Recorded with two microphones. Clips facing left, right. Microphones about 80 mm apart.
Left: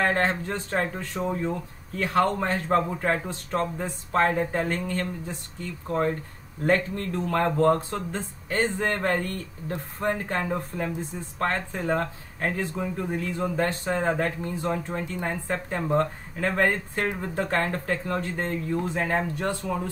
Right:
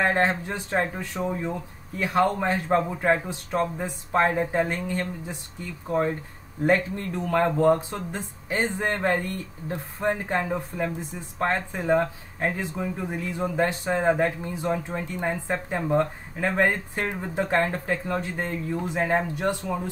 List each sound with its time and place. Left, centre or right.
0.0 s speech: centre